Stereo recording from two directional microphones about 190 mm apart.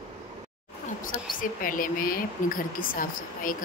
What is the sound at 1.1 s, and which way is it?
A woman's voice, 45° left (ahead or behind).